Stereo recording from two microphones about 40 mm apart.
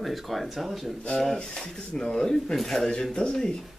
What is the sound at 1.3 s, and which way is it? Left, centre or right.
Speech, left.